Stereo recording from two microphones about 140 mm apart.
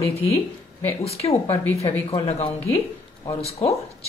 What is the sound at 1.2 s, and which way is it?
Speech, 40° left (ahead or behind).